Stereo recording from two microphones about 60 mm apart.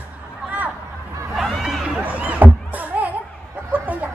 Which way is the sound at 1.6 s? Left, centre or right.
Centre.